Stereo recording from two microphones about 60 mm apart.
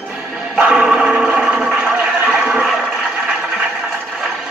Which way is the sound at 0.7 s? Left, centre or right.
Centre.